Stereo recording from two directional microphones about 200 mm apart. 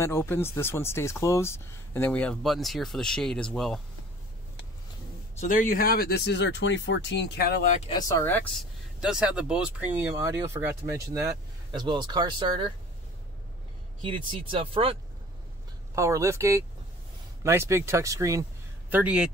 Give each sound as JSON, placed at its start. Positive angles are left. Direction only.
{"t": 0.0, "sound": "speech", "side_deg": 10}
{"t": 5.4, "sound": "speech", "side_deg": 40}
{"t": 7.9, "sound": "speech", "side_deg": 15}
{"t": 9.0, "sound": "speech", "side_deg": -5}
{"t": 10.1, "sound": "speech", "side_deg": -15}
{"t": 14.0, "sound": "speech", "side_deg": -25}
{"t": 15.9, "sound": "speech", "side_deg": -15}